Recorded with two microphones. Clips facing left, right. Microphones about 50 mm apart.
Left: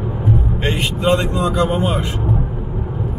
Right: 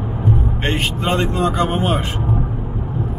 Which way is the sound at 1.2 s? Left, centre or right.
Right.